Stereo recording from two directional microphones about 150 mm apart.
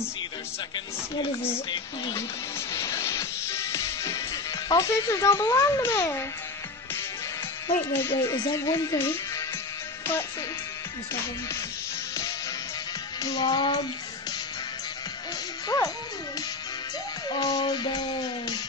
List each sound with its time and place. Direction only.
2.7 s music: 20° left (ahead or behind)
4.6 s a child's voice: 20° left (ahead or behind)
7.6 s a child's voice: 20° left (ahead or behind)
13.2 s a child's voice: 25° left (ahead or behind)
17.3 s a child's voice: 25° left (ahead or behind)